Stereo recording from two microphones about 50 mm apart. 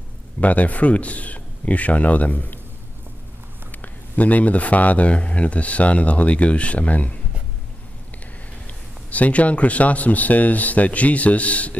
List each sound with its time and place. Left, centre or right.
0.4 s speech: left
3.7 s speech: left
8.6 s speech: left